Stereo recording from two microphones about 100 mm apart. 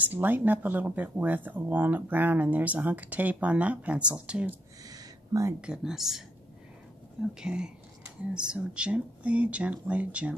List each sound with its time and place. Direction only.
0.0 s speech: 20° right (ahead or behind)
4.8 s a sound: 35° right (ahead or behind)
5.6 s speech: 5° right (ahead or behind)